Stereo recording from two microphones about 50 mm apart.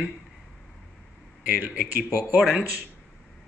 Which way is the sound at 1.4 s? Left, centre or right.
Right.